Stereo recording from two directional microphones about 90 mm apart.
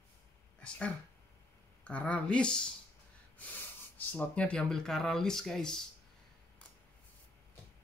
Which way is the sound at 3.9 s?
20° left (ahead or behind).